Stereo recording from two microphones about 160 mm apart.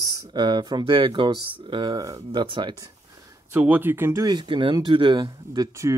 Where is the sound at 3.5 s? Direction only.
10° right (ahead or behind).